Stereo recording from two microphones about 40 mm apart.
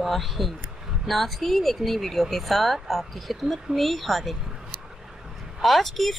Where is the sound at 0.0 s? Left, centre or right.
Centre.